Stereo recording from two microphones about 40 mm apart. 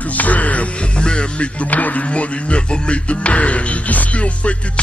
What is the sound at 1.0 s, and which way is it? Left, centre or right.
Speech, left.